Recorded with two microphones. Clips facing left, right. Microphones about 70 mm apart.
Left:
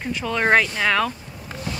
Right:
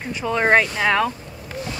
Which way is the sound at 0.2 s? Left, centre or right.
Centre.